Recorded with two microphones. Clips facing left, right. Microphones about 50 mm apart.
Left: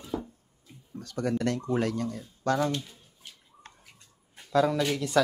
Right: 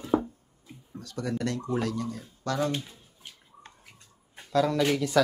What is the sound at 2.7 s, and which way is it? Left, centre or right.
Speech, centre.